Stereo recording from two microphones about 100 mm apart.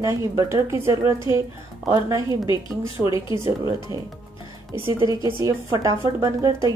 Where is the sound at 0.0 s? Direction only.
30° right (ahead or behind).